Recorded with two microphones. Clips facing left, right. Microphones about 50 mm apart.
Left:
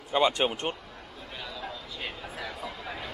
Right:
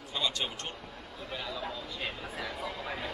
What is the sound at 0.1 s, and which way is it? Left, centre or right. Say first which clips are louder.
Speech: left 9 dB; left.